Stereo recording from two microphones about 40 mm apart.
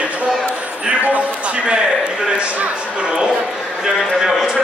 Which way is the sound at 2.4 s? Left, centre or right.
Right.